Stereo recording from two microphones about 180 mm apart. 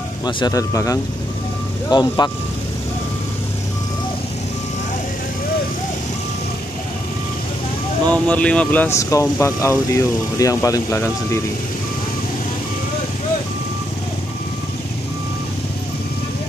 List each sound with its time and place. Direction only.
0.2 s speech: 20° left (ahead or behind)
8.1 s speech: 5° left (ahead or behind)